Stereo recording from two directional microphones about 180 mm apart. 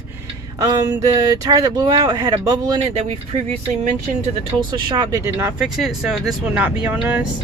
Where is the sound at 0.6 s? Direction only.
20° right (ahead or behind).